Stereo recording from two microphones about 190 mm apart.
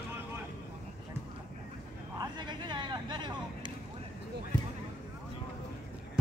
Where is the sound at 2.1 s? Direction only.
25° right (ahead or behind).